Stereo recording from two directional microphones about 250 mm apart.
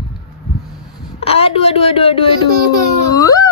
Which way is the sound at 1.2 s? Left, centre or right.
Left.